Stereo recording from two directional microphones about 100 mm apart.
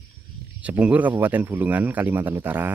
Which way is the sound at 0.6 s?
15° right (ahead or behind).